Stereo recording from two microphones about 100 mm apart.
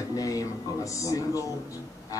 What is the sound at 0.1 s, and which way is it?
Music, 35° left (ahead or behind).